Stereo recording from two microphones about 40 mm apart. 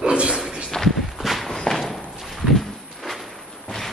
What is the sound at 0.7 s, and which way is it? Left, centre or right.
Walk, centre.